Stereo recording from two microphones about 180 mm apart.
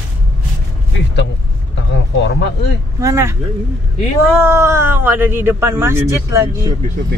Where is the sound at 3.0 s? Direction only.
15° right (ahead or behind).